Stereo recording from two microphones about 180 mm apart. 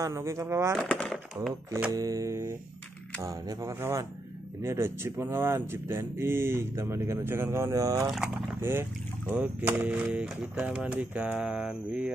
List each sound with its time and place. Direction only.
0.0 s speech: 15° right (ahead or behind)
0.7 s speech: 5° left (ahead or behind)
1.7 s speech: 15° right (ahead or behind)